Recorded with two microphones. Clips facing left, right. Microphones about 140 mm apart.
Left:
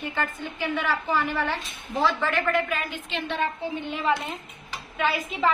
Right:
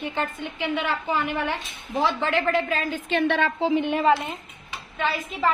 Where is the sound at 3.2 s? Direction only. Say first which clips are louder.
Right 5 dB; 80° right.